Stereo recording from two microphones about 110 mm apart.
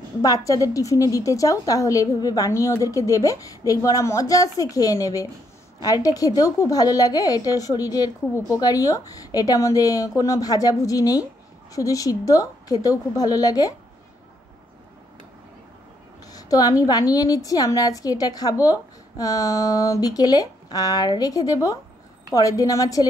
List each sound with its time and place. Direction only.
0.2 s a woman's voice: 30° left (ahead or behind)
16.3 s a woman's voice: 35° left (ahead or behind)